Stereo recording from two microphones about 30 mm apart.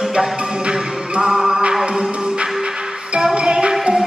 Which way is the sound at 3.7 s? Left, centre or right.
Right.